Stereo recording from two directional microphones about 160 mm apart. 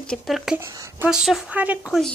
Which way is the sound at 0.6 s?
20° right (ahead or behind).